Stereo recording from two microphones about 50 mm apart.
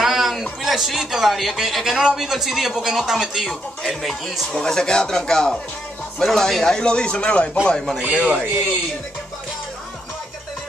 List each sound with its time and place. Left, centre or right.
0.0 s speech: centre
4.5 s speech: centre
8.0 s a man's voice: right